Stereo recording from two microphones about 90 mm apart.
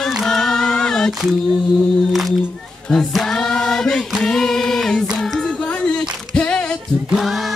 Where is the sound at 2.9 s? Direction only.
5° left (ahead or behind).